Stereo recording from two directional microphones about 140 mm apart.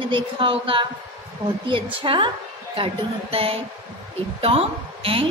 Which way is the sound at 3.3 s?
45° right (ahead or behind).